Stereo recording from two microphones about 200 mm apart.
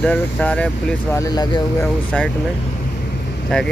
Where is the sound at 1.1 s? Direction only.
20° left (ahead or behind).